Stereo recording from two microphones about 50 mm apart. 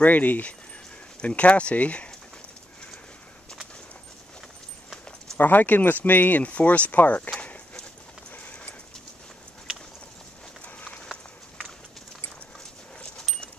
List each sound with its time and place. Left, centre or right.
0.0 s speech: left
5.4 s speech: left
7.3 s clip-clop: left
8.3 s a sound: left
10.6 s run: left